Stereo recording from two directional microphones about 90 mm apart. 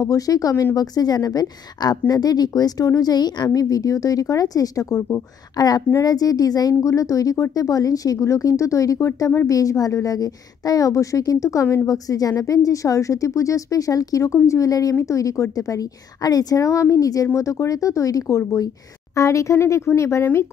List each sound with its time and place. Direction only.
0.0 s a woman's voice: 40° left (ahead or behind)